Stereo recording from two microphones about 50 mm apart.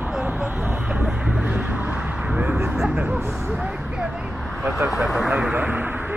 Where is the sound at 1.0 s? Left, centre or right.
Right.